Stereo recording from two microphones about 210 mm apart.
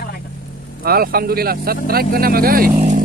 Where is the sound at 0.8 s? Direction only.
45° right (ahead or behind).